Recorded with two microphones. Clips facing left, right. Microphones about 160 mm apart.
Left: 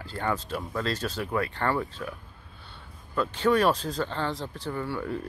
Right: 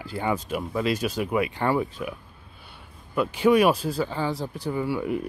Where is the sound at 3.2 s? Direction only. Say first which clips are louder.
Right 4 dB; 10° right (ahead or behind).